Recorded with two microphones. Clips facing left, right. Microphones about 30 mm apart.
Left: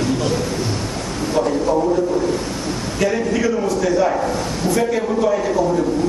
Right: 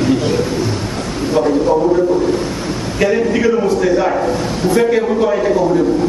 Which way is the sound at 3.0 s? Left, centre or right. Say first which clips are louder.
Right 5 dB; centre.